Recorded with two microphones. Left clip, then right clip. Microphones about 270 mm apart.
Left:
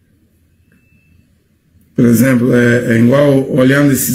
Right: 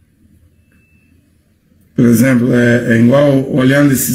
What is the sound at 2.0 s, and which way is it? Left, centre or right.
A man's voice, centre.